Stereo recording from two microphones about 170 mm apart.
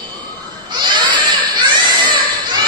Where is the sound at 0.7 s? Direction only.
25° right (ahead or behind).